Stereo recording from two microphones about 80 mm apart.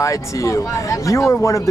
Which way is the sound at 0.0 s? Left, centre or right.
Left.